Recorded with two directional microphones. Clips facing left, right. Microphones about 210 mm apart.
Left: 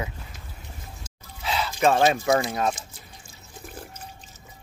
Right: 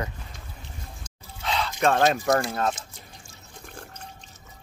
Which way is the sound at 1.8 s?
5° left (ahead or behind).